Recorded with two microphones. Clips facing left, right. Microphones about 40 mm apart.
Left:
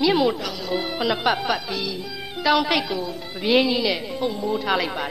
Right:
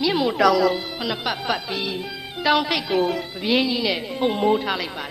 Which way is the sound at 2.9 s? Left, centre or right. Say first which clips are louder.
Right 7 dB; right.